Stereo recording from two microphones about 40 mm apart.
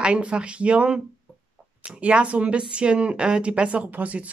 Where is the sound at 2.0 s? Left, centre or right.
Right.